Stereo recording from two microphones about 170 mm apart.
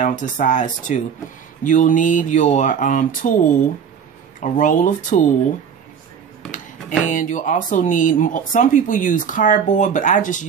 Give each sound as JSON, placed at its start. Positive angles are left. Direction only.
{"t": 0.0, "sound": "speech", "side_deg": 50}
{"t": 7.1, "sound": "speech", "side_deg": 50}